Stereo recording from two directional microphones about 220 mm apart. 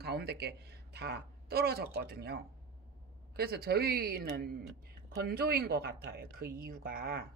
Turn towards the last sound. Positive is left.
turn(degrees=-40)  # may be behind; listen again after turning